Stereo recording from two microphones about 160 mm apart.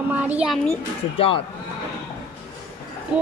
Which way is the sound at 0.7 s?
35° left (ahead or behind).